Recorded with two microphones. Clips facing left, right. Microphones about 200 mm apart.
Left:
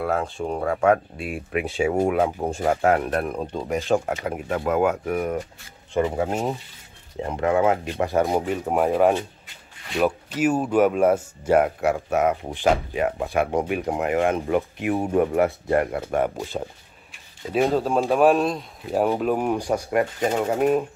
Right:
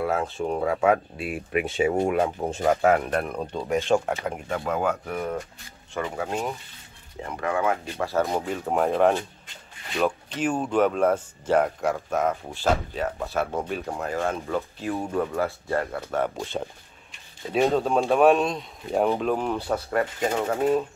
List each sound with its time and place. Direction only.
0.0 s speech: centre (ahead or behind)
4.2 s speech: 10° left (ahead or behind)
5.9 s speech: 25° left (ahead or behind)
17.5 s speech: centre (ahead or behind)